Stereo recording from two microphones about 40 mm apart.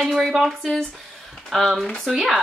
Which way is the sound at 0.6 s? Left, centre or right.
Centre.